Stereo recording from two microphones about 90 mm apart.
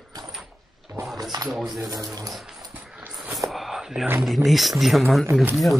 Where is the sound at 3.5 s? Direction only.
Centre (ahead or behind).